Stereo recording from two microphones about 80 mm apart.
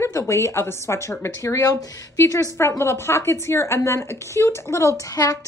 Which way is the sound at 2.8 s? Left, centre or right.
Left.